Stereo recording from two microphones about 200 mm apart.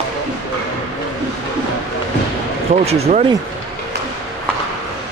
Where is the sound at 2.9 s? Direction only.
30° right (ahead or behind).